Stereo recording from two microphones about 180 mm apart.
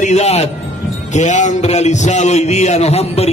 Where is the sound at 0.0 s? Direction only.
40° left (ahead or behind).